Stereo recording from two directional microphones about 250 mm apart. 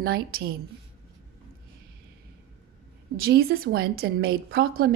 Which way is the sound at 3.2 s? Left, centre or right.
Right.